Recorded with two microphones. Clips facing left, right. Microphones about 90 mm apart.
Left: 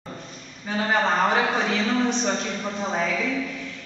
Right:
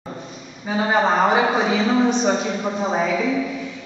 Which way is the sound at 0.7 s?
10° right (ahead or behind).